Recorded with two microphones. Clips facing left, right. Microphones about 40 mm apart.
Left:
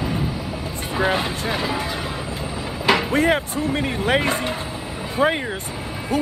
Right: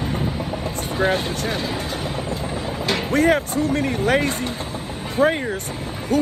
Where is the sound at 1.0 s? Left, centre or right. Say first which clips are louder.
Even; left.